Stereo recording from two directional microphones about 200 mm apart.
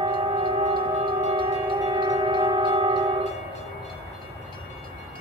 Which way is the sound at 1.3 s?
25° right (ahead or behind).